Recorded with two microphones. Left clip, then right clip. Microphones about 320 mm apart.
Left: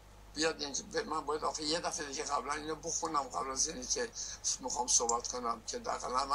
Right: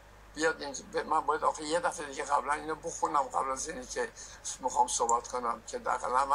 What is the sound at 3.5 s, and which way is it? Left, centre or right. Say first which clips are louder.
Speech: even; centre.